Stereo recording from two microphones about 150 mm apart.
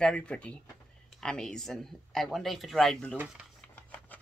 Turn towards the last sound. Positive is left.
turn(degrees=10)  # may be behind; listen again after turning